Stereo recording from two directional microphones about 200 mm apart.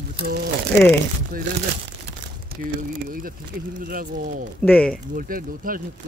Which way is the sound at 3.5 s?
50° right (ahead or behind).